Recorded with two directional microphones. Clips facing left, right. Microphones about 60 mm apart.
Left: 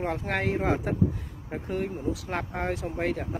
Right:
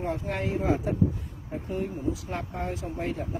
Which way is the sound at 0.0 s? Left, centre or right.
Left.